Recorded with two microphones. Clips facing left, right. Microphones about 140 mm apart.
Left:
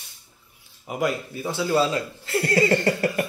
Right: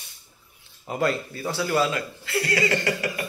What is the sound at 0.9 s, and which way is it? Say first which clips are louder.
Speech: even; 15° left (ahead or behind).